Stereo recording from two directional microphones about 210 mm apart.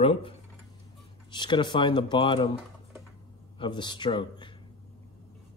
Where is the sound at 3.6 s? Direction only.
20° left (ahead or behind).